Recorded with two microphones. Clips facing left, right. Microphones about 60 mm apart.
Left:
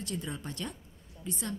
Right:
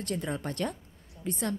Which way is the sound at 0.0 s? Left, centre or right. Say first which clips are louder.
Right 5 dB; right.